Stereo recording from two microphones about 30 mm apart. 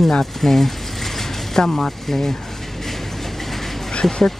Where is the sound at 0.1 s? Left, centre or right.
Centre.